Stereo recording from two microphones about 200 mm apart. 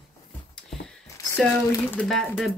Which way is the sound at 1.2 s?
15° left (ahead or behind).